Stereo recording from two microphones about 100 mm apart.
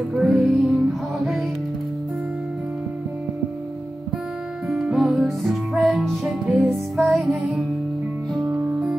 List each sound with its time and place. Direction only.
0.1 s music: centre (ahead or behind)
4.6 s music: centre (ahead or behind)